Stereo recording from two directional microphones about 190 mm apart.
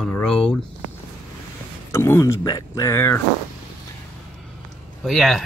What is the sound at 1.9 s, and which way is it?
Speech, 15° left (ahead or behind).